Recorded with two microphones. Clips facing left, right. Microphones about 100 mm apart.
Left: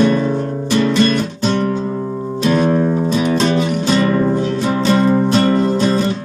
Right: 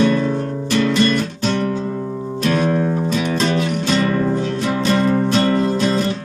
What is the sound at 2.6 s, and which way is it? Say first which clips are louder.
Music: left 3 dB; 25° left (ahead or behind).